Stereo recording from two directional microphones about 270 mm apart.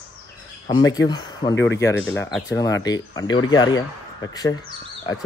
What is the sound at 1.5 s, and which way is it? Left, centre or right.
Speech, left.